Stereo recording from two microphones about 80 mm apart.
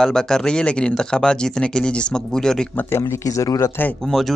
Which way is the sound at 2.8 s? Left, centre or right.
Left.